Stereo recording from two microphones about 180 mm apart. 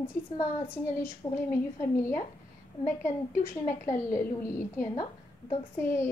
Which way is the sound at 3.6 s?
15° left (ahead or behind).